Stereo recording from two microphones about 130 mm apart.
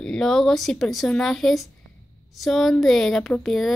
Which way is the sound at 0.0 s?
5° left (ahead or behind).